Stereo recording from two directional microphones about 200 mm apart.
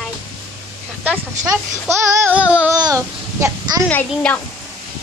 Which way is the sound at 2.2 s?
5° right (ahead or behind).